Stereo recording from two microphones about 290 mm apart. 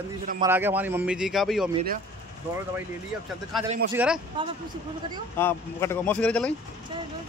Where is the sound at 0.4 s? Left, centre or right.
Centre.